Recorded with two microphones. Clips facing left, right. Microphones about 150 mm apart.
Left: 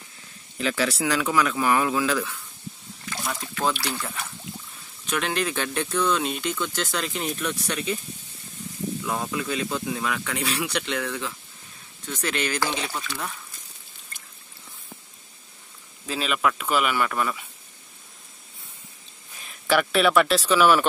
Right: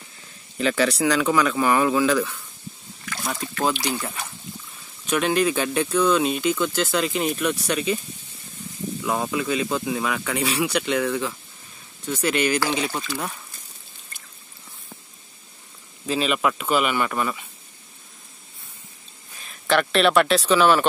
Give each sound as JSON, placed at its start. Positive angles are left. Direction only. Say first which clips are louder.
{"t": 0.6, "sound": "speech", "louder": "right 4 dB", "side_deg": 0}
{"t": 3.3, "sound": "speech", "louder": "right 3 dB", "side_deg": 0}
{"t": 3.7, "sound": "speech", "louder": "right 4 dB", "side_deg": -20}
{"t": 5.1, "sound": "speech", "louder": "right 6 dB", "side_deg": -10}
{"t": 9.3, "sound": "speech", "louder": "right 4 dB", "side_deg": -10}
{"t": 16.1, "sound": "speech", "louder": "right 3 dB", "side_deg": 0}
{"t": 19.7, "sound": "speech", "louder": "right 1 dB", "side_deg": 5}